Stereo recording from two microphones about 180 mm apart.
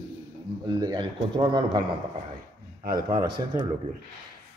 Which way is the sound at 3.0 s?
25° right (ahead or behind).